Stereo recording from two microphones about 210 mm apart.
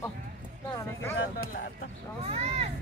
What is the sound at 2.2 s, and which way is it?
Speech, 30° right (ahead or behind).